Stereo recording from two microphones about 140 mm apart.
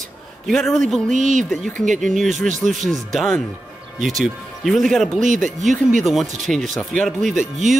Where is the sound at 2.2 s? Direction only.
65° right (ahead or behind).